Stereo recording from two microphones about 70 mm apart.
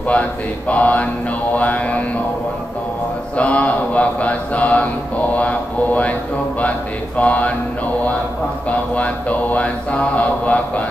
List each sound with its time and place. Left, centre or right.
0.1 s mantra: left
3.3 s mantra: centre
7.2 s mantra: centre
8.6 s mantra: centre